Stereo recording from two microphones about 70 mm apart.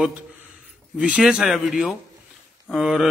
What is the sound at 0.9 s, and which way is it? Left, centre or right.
A man's voice, centre.